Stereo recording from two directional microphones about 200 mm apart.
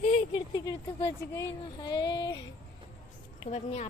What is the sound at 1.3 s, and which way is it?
Speech, 20° left (ahead or behind).